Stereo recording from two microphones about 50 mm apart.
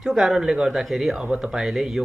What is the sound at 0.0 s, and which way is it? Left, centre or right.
Speech, centre.